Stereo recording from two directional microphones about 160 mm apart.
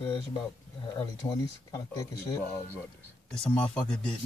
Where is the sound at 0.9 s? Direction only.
20° left (ahead or behind).